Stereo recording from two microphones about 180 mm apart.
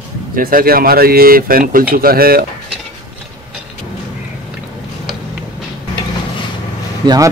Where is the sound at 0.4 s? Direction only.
55° right (ahead or behind).